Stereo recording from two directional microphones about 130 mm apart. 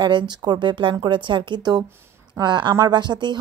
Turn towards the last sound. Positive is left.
turn(degrees=-35)  # may be behind; listen again after turning